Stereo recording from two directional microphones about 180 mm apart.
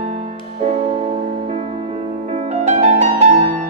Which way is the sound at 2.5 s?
40° right (ahead or behind).